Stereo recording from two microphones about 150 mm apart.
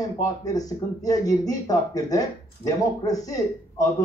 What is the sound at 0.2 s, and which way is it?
Speech, 25° left (ahead or behind).